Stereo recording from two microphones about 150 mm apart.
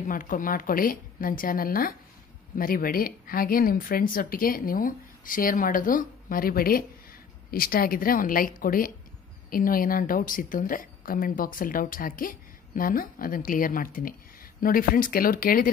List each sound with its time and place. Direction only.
0.1 s speech: 65° left (ahead or behind)